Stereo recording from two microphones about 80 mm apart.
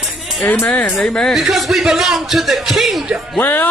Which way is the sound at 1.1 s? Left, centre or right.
Centre.